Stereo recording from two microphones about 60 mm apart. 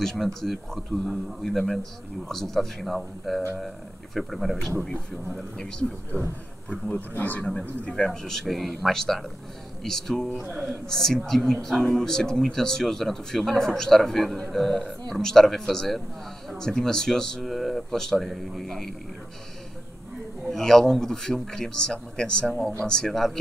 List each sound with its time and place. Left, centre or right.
0.0 s a man's voice: centre
6.7 s a man's voice: left
7.9 s a man's voice: centre
10.5 s a man's voice: centre
10.9 s a man's voice: centre
20.4 s speech: centre